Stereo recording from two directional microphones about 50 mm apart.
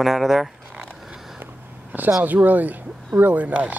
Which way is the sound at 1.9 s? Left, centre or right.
Right.